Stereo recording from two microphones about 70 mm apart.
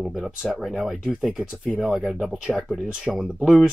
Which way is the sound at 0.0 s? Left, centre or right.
Centre.